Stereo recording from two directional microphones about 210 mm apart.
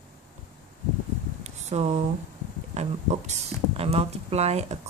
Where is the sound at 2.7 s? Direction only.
30° right (ahead or behind).